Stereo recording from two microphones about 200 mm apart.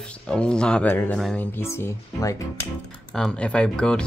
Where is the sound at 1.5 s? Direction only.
15° left (ahead or behind).